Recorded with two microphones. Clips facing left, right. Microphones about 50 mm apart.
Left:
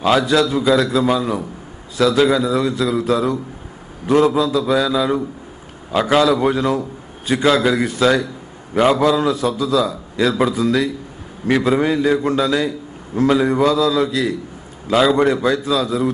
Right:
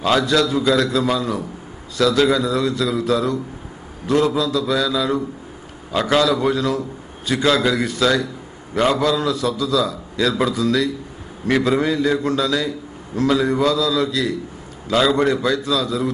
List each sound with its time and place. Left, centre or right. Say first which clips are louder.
0.0 s a man's voice: left 2 dB; centre
4.4 s a man's voice: left 3 dB; left
6.2 s a man's voice: left 2 dB; left